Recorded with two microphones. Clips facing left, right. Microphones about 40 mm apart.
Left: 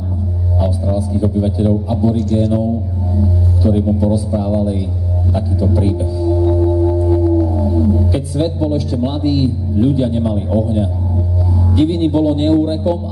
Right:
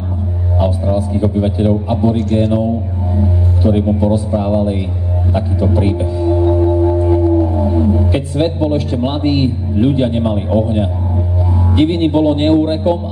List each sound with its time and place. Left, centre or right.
0.6 s a man's voice: right